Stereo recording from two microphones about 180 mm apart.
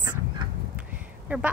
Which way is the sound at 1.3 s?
10° right (ahead or behind).